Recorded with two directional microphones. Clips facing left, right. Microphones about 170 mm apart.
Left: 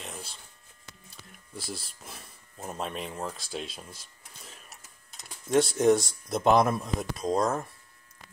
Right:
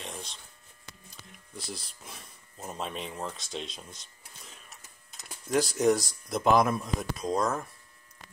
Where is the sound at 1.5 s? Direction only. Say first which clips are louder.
Left 2 dB; centre (ahead or behind).